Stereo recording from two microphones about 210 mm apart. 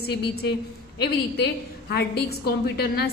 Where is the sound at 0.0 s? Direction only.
50° left (ahead or behind).